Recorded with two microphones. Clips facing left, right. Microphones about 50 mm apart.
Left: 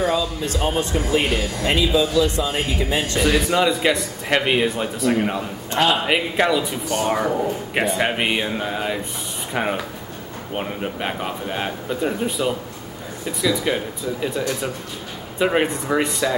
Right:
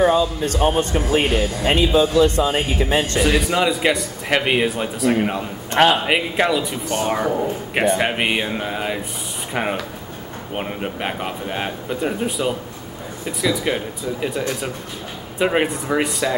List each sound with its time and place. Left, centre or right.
0.0 s speech: right
3.2 s speech: centre
5.7 s speech: right
6.0 s speech: centre
15.3 s speech: centre